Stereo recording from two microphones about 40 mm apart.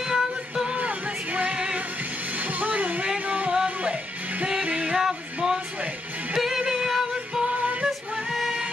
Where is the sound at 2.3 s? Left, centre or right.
Right.